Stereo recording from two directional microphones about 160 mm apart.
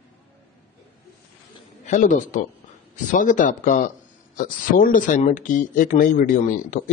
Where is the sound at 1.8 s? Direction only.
50° left (ahead or behind).